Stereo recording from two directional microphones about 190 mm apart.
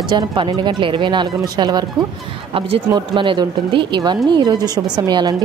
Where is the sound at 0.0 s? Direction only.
25° right (ahead or behind).